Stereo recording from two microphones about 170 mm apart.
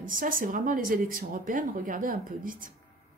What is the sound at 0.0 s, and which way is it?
Speech, 50° right (ahead or behind).